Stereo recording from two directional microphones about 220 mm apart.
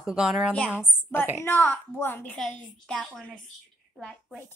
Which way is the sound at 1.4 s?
10° left (ahead or behind).